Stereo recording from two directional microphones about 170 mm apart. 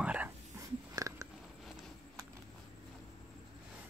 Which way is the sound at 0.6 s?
20° right (ahead or behind).